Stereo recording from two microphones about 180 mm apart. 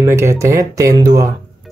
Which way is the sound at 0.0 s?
15° right (ahead or behind).